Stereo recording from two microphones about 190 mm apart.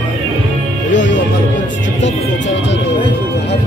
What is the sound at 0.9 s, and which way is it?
Music, 70° left (ahead or behind).